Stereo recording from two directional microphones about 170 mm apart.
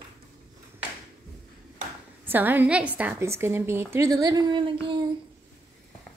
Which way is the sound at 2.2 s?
10° right (ahead or behind).